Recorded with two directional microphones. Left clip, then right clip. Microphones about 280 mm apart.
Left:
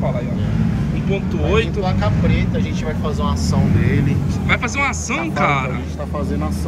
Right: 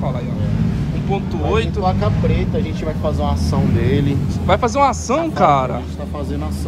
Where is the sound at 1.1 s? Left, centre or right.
Centre.